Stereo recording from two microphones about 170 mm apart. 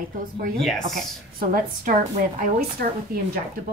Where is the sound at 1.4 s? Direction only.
55° right (ahead or behind).